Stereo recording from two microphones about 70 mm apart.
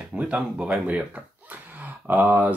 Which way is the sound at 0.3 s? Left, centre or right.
Centre.